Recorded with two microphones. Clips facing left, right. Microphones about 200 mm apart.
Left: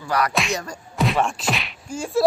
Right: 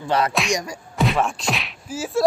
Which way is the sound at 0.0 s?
25° right (ahead or behind).